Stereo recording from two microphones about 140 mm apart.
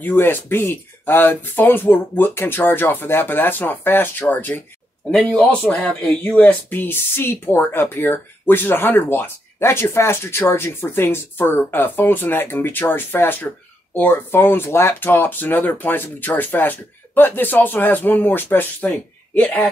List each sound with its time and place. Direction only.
0.0 s speech: 15° left (ahead or behind)